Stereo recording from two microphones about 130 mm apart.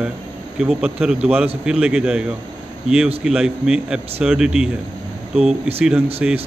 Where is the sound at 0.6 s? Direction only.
5° right (ahead or behind).